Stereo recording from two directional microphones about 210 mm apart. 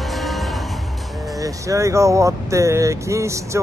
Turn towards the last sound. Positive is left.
turn(degrees=-15)  # may be behind; listen again after turning